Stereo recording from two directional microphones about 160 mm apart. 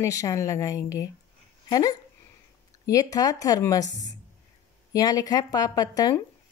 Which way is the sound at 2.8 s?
20° left (ahead or behind).